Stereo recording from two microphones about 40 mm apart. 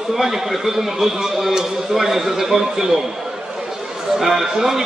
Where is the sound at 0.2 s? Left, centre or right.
Centre.